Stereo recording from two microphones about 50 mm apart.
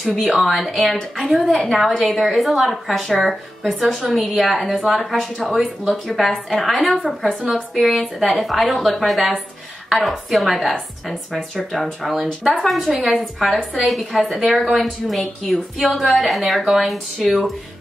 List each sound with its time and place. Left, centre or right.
0.0 s a woman's voice: centre
7.9 s a woman's voice: centre